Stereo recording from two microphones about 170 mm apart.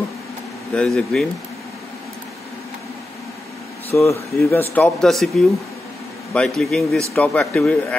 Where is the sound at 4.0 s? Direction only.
15° left (ahead or behind).